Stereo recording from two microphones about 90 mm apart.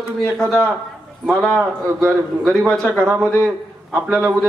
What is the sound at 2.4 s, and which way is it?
Speech, 5° left (ahead or behind).